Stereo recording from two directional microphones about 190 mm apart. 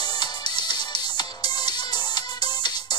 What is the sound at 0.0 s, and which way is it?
Music, 20° left (ahead or behind).